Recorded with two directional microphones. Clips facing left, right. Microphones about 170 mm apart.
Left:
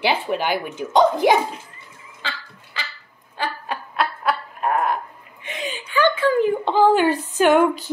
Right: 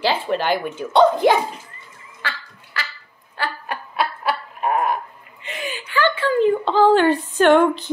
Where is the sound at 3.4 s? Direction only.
15° left (ahead or behind).